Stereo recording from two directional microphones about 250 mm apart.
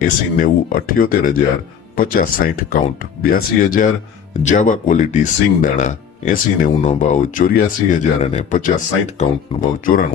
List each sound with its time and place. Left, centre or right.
0.0 s speech: left